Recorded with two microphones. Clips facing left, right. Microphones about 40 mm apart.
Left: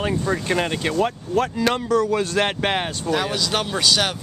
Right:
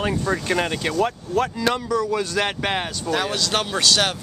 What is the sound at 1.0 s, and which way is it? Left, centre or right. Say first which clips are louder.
Speech: even; left.